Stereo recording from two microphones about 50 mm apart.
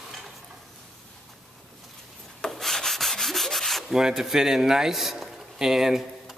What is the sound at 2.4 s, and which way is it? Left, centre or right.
Rub, centre.